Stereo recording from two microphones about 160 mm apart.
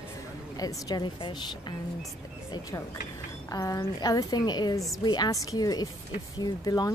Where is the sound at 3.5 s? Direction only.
20° left (ahead or behind).